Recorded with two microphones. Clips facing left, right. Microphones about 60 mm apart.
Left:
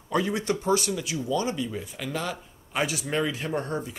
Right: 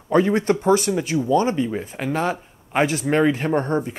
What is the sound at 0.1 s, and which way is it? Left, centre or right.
Speech, right.